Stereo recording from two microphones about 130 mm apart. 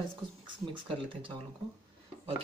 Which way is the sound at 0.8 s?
40° right (ahead or behind).